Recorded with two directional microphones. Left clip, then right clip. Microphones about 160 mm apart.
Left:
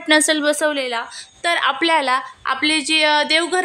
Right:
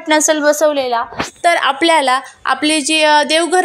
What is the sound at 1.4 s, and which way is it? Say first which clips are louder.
Speech: right 5 dB; 20° right (ahead or behind).